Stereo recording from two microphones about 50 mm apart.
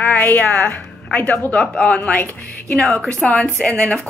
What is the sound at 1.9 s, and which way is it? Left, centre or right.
Speech, left.